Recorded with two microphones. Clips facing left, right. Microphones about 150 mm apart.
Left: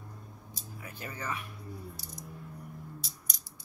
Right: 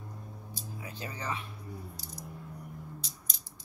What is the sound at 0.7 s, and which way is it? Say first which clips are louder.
Speech: even; 20° right (ahead or behind).